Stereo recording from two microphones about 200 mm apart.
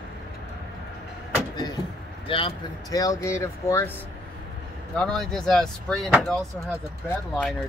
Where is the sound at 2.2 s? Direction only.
25° left (ahead or behind).